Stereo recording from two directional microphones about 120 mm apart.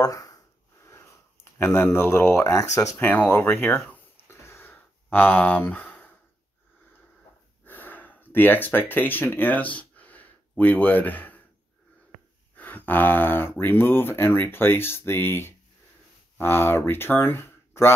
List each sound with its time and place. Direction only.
0.0 s a sound: 30° left (ahead or behind)
2.7 s speech: 25° left (ahead or behind)
3.6 s a sound: 15° left (ahead or behind)
7.6 s gasp: 15° left (ahead or behind)
10.6 s speech: 15° left (ahead or behind)
12.5 s speech: 15° left (ahead or behind)